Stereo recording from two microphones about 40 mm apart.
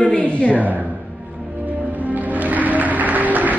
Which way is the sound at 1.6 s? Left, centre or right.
Right.